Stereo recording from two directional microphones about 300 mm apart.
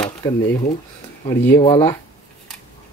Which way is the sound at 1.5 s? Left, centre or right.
Centre.